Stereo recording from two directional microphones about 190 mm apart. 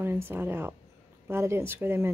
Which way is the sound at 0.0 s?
10° right (ahead or behind).